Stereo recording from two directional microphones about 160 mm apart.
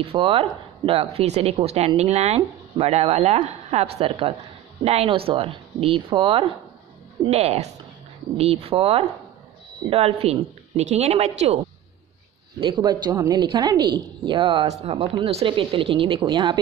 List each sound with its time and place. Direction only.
0.0 s speech: 35° right (ahead or behind)
12.5 s a woman's voice: 30° right (ahead or behind)